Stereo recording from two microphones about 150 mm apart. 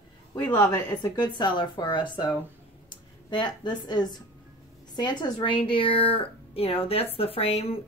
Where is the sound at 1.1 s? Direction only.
30° left (ahead or behind).